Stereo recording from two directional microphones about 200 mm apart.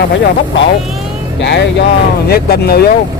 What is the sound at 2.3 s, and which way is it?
Speech, 50° left (ahead or behind).